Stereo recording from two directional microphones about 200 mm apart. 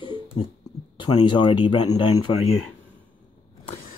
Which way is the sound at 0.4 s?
25° left (ahead or behind).